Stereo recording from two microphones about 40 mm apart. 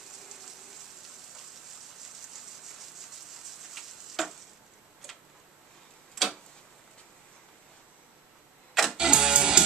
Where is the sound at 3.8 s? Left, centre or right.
Centre.